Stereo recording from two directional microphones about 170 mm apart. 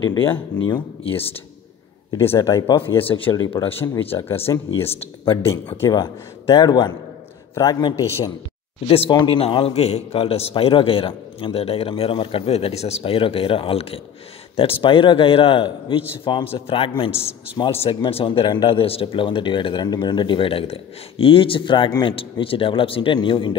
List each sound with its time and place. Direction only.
0.0 s a man's voice: 20° left (ahead or behind)
2.2 s speech: 15° left (ahead or behind)
3.1 s speech: 30° left (ahead or behind)
4.5 s a man's voice: 15° left (ahead or behind)
8.8 s speech: 35° left (ahead or behind)